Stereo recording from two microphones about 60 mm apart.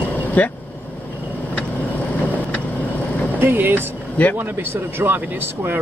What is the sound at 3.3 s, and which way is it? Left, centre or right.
Speech, right.